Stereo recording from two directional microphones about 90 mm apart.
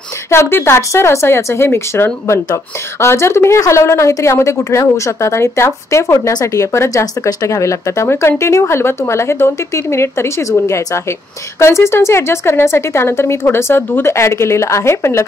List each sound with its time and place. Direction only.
0.3 s speech: 25° left (ahead or behind)